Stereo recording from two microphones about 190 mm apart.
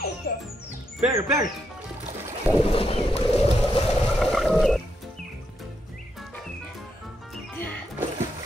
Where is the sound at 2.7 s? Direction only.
30° left (ahead or behind).